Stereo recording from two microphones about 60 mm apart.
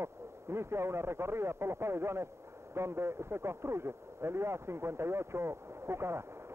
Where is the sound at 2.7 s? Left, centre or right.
Right.